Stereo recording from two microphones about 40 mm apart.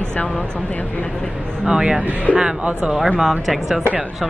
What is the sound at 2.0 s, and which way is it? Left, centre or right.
Speech, right.